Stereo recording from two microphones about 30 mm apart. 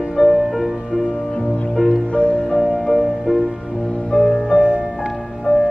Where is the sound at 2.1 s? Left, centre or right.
Left.